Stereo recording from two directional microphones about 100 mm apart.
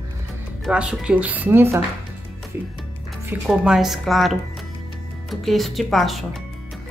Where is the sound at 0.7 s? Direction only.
10° right (ahead or behind).